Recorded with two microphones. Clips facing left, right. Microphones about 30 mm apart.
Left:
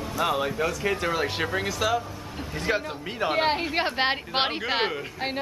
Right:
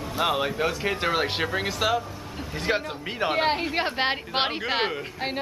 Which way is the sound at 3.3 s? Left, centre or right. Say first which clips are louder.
Left 1 dB; centre.